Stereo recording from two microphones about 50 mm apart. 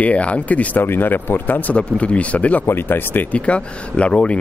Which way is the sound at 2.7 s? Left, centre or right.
Left.